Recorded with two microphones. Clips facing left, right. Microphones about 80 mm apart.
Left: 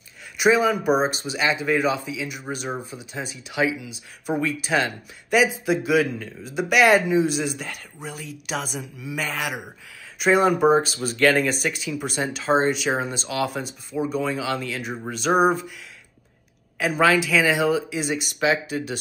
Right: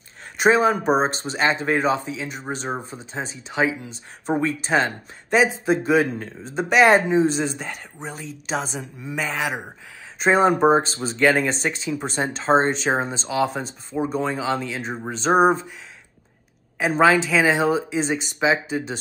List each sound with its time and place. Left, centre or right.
0.4 s speech: right
8.5 s a man's voice: centre
8.8 s speech: right
9.1 s a man's voice: centre
9.5 s speech: right
11.1 s speech: centre
11.6 s speech: right
16.7 s a woman's voice: right